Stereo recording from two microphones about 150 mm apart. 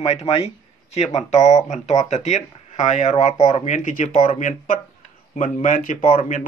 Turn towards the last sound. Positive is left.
turn(degrees=55)  # may be behind; listen again after turning